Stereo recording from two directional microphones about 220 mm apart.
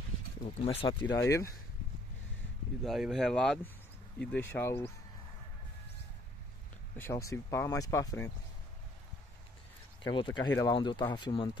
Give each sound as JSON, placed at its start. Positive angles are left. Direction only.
{"t": 0.7, "sound": "speech", "side_deg": 25}
{"t": 1.0, "sound": "speech", "side_deg": 10}
{"t": 2.8, "sound": "speech", "side_deg": 0}
{"t": 7.0, "sound": "speech", "side_deg": 15}
{"t": 10.0, "sound": "speech", "side_deg": 20}